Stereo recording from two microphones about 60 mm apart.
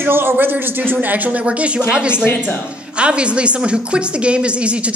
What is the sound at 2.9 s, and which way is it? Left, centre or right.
A man's voice, centre.